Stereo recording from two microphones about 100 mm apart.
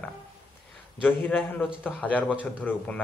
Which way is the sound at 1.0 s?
15° left (ahead or behind).